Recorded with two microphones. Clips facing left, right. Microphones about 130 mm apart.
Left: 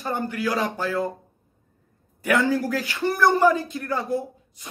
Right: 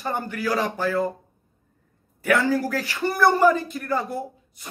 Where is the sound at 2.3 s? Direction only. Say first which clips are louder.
Even; centre (ahead or behind).